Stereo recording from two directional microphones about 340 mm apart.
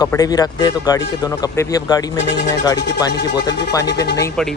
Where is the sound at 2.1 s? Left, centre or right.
Left.